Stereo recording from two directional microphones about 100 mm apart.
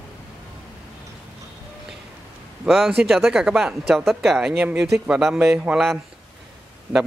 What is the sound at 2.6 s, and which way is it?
Speech, centre (ahead or behind).